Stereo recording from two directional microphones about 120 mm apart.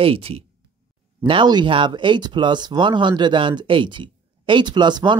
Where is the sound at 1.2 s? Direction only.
40° right (ahead or behind).